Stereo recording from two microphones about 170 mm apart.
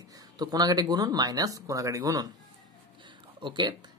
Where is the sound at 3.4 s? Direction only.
25° right (ahead or behind).